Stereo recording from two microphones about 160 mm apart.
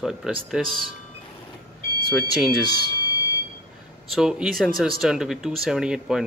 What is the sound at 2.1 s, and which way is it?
Speech, centre (ahead or behind).